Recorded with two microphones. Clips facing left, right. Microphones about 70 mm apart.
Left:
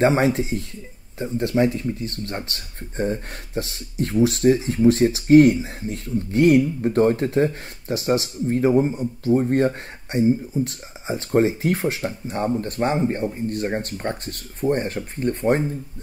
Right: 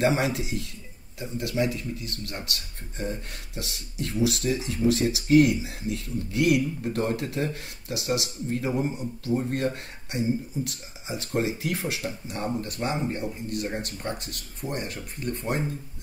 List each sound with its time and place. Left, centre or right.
0.0 s speech: left